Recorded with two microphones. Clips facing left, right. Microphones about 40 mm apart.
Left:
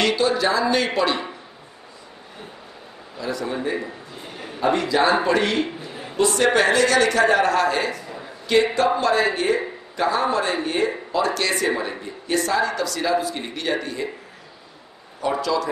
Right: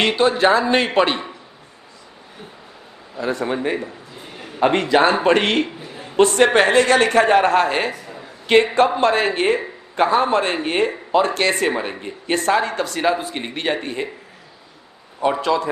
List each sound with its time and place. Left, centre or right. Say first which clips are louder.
0.0 s speech: right 4 dB; right
3.2 s speech: right 5 dB; right
4.6 s a man's voice: right 4 dB; right
15.1 s speech: right 4 dB; right